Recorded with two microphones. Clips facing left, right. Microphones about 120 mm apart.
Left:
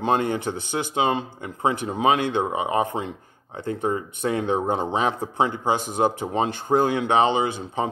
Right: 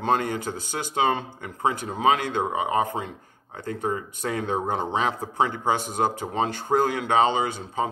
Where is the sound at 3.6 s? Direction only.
25° left (ahead or behind).